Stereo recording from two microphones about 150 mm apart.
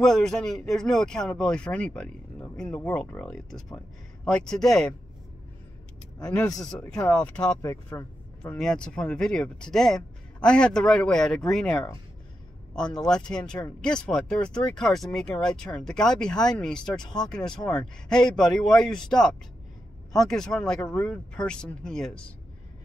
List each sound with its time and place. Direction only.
0.0 s speech: 5° left (ahead or behind)
7.1 s speech: 5° left (ahead or behind)
7.6 s speech: 25° left (ahead or behind)
8.4 s speech: 5° left (ahead or behind)
13.0 s speech: 5° left (ahead or behind)
13.4 s speech: 25° left (ahead or behind)
13.7 s speech: 5° left (ahead or behind)